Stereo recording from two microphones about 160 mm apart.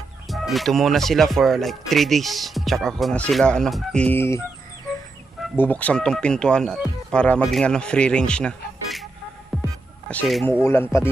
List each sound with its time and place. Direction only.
0.3 s speech: centre (ahead or behind)
5.6 s speech: 10° left (ahead or behind)
9.5 s music: centre (ahead or behind)
10.0 s speech: centre (ahead or behind)
10.4 s speech: 15° left (ahead or behind)